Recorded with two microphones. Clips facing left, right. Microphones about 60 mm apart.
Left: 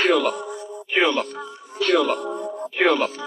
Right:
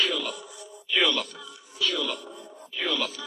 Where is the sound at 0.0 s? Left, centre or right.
Left.